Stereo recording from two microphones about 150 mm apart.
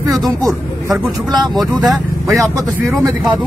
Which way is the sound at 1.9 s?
20° right (ahead or behind).